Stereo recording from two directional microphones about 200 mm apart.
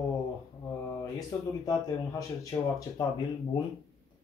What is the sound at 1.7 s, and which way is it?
Speech, 15° left (ahead or behind).